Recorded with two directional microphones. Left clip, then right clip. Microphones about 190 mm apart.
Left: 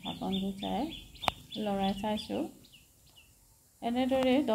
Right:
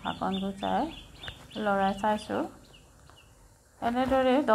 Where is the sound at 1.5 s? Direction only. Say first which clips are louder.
Right 7 dB; 10° left (ahead or behind).